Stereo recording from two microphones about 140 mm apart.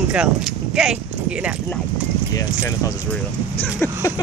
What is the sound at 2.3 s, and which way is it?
Speech, 25° left (ahead or behind).